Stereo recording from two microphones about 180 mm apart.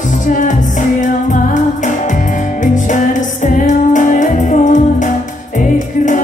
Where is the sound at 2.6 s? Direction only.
45° left (ahead or behind).